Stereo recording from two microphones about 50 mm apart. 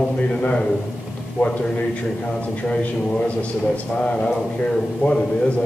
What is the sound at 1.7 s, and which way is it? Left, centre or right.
A man's voice, left.